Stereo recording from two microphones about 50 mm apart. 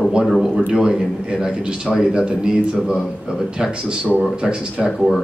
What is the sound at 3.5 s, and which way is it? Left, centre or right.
Speech, centre.